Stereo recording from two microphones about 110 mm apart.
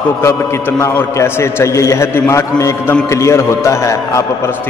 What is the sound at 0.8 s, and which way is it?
A man's voice, 25° left (ahead or behind).